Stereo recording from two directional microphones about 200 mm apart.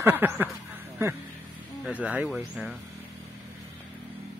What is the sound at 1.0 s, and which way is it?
Speech, 10° right (ahead or behind).